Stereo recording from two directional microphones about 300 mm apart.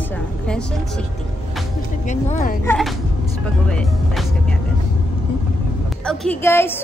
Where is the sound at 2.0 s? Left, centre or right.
Left.